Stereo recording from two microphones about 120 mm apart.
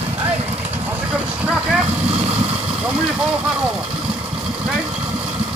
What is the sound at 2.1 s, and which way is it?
Vehicle, 55° right (ahead or behind).